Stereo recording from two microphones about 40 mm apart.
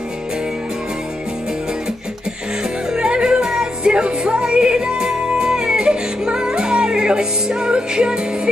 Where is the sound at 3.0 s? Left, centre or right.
Centre.